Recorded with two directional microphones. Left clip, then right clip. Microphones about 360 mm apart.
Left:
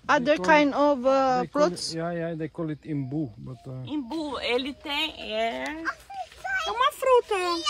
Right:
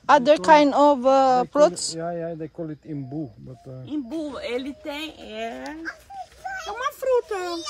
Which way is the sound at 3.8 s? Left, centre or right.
Centre.